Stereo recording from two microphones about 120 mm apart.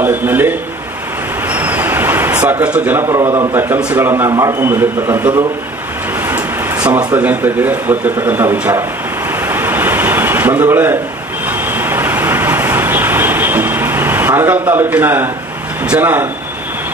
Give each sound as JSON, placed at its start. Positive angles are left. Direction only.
{"t": 0.0, "sound": "a man's voice", "side_deg": -15}
{"t": 1.5, "sound": "a sound", "side_deg": -15}
{"t": 3.1, "sound": "a man's voice", "side_deg": -25}
{"t": 6.2, "sound": "vehicle", "side_deg": -20}
{"t": 7.2, "sound": "a man's voice", "side_deg": -15}
{"t": 9.3, "sound": "a sound", "side_deg": -15}
{"t": 11.4, "sound": "vehicle", "side_deg": -15}
{"t": 14.7, "sound": "a man's voice", "side_deg": -15}